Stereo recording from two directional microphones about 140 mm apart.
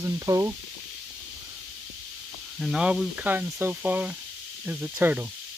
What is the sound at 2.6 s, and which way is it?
Speech, 5° right (ahead or behind).